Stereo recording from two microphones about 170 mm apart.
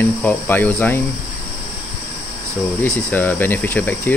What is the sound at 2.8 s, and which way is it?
Speech, 10° left (ahead or behind).